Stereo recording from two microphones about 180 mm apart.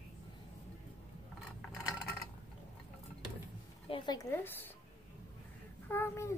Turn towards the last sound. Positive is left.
turn(degrees=15)  # may be behind; listen again after turning